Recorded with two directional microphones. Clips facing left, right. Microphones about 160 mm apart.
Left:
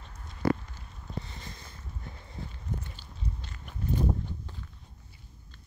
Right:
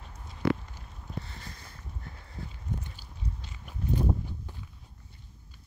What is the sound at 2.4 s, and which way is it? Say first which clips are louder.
Walk: even; 20° left (ahead or behind).